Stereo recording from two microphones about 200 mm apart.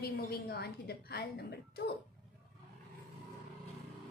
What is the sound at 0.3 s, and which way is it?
Speech, 50° left (ahead or behind).